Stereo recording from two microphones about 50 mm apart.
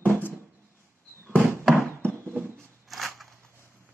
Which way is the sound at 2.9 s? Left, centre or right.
Centre.